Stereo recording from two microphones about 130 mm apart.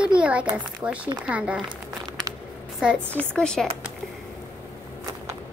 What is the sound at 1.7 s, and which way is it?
Crumpling, 35° right (ahead or behind).